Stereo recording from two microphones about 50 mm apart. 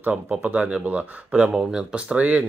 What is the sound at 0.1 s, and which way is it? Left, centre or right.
Speech, right.